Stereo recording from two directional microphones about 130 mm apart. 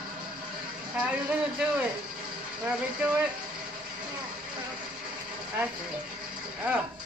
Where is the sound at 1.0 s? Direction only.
10° right (ahead or behind).